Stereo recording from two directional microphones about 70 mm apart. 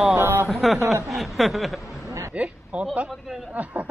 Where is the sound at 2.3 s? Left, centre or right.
Centre.